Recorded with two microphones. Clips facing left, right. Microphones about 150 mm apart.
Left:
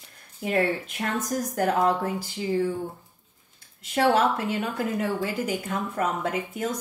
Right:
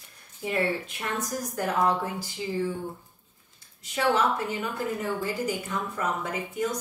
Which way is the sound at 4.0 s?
55° left (ahead or behind).